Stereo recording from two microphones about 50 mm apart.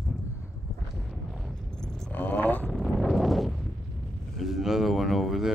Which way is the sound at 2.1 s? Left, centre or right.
Left.